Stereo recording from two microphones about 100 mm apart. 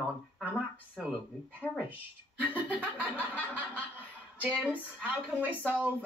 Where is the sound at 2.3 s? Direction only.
15° right (ahead or behind).